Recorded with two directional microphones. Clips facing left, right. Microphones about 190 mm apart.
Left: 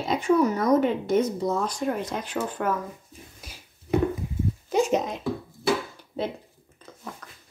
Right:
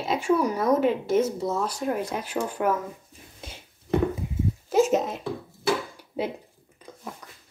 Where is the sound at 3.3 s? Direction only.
25° right (ahead or behind).